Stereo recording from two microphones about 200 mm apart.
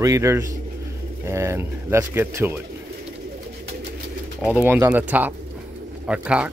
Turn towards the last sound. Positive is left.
turn(degrees=-5)  # may be behind; listen again after turning